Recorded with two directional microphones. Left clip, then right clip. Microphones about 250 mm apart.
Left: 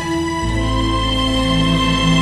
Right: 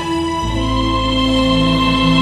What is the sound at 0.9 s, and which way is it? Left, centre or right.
Music, left.